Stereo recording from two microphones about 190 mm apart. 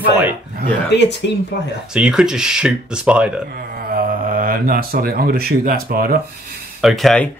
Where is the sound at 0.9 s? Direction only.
65° left (ahead or behind).